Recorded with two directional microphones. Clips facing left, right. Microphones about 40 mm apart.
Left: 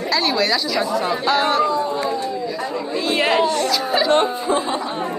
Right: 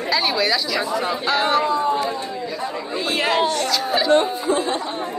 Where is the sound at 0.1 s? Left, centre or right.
Centre.